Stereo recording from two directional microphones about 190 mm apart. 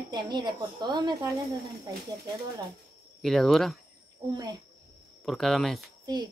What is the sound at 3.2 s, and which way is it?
Speech, centre (ahead or behind).